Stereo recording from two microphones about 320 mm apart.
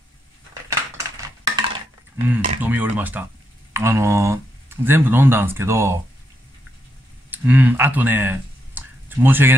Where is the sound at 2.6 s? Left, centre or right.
Centre.